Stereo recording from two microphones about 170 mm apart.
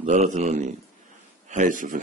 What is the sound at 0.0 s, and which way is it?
A man's voice, 45° right (ahead or behind).